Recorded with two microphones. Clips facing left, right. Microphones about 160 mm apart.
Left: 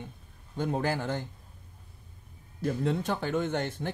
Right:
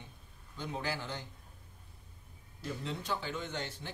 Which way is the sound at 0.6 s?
50° left (ahead or behind).